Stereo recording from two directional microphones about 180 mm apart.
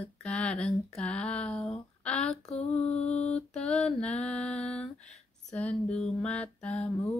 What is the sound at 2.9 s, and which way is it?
Mantra, 40° left (ahead or behind).